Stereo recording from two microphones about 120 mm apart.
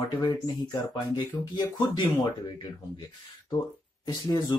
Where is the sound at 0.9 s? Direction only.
40° left (ahead or behind).